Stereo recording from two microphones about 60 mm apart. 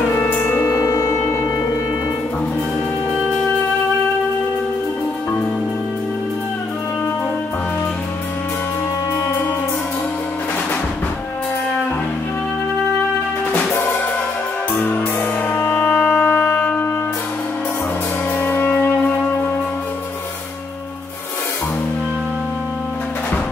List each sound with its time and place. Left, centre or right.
0.1 s music: left
0.7 s music: left
14.7 s music: left
18.4 s music: left